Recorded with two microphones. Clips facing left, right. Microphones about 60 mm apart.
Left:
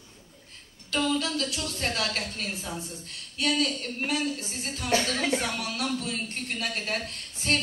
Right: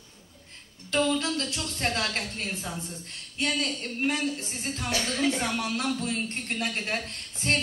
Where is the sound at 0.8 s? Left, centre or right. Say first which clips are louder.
Right 1 dB; right.